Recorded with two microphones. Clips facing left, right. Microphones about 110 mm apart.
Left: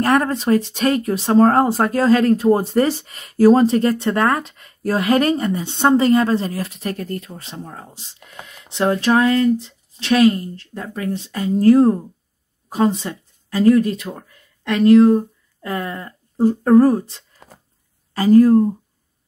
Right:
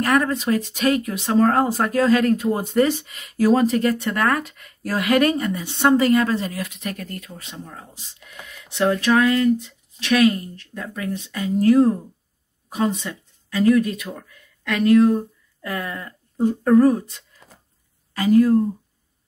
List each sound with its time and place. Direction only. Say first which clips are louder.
0.0 s speech: left 3 dB; 35° left (ahead or behind)
17.4 s a sound: left 8 dB; 60° left (ahead or behind)
18.1 s speech: left 4 dB; 35° left (ahead or behind)